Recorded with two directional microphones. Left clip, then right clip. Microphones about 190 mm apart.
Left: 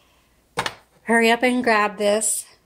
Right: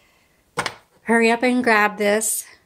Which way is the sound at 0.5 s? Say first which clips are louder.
Even; 10° right (ahead or behind).